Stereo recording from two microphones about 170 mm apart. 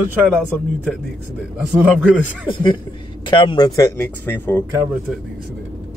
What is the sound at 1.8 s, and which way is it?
Speech, 10° right (ahead or behind).